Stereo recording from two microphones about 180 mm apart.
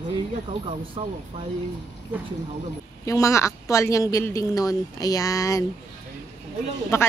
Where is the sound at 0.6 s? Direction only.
30° right (ahead or behind).